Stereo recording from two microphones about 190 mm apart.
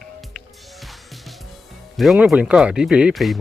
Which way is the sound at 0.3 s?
Centre (ahead or behind).